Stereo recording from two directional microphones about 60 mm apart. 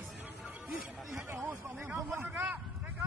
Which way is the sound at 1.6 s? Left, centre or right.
Right.